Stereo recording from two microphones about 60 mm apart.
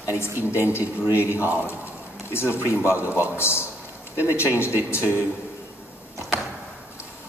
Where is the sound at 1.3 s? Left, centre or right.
Right.